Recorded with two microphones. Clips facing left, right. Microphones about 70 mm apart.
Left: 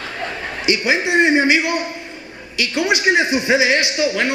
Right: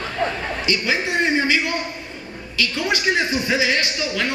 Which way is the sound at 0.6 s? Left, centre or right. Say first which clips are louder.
Left 5 dB; centre.